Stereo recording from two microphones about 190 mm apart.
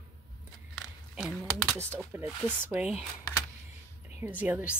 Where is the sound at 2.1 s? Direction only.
10° right (ahead or behind).